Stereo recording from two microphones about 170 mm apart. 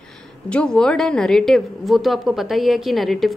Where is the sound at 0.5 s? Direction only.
5° left (ahead or behind).